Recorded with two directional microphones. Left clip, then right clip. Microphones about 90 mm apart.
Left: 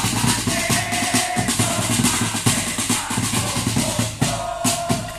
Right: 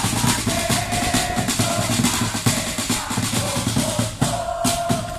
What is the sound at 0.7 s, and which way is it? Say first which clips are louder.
Music: left 1 dB; 20° right (ahead or behind).